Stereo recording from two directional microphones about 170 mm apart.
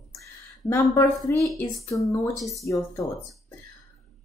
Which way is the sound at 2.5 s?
20° left (ahead or behind).